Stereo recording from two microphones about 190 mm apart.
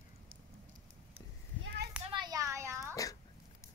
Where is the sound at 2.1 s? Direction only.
20° right (ahead or behind).